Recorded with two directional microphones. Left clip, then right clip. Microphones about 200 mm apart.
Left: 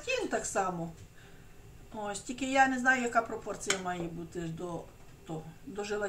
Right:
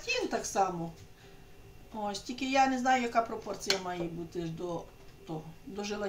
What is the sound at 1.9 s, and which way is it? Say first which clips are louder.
Speech: right 1 dB; 10° right (ahead or behind).